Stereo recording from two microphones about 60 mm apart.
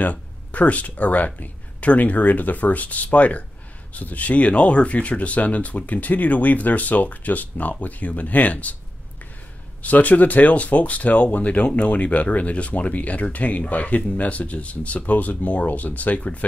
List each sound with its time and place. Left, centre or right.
0.0 s speech: left
9.8 s speech: left